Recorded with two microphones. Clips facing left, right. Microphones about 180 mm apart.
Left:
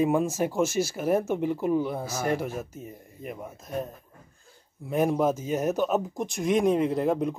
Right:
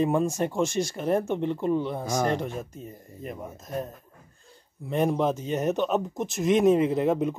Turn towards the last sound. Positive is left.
turn(degrees=0)  # may be behind; listen again after turning